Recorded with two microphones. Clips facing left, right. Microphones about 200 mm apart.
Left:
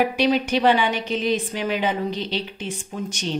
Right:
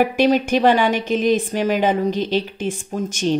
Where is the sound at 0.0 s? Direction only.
45° right (ahead or behind).